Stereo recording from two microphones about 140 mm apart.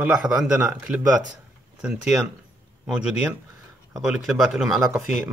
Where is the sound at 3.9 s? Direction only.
5° right (ahead or behind).